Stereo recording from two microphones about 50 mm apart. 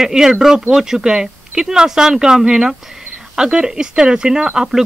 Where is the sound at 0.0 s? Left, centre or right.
Centre.